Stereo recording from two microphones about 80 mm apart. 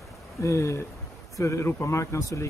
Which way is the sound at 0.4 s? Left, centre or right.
Left.